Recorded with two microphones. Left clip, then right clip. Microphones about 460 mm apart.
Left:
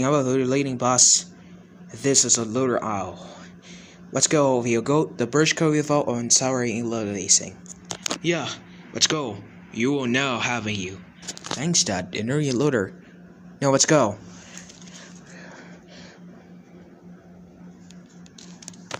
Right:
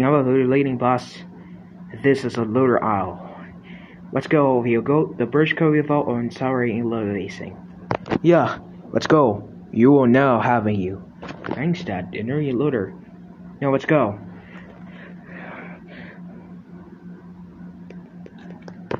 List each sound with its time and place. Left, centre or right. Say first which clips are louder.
0.0 s speech: right 4 dB; right
8.2 s speech: right 11 dB; right
11.6 s speech: left 6 dB; right
15.3 s a sound: right 8 dB; right